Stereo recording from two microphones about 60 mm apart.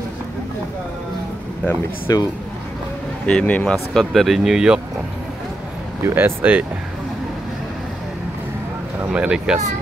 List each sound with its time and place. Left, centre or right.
2.1 s speech: left
3.3 s speech: centre
4.0 s speech: centre
6.0 s speech: right
9.1 s speech: centre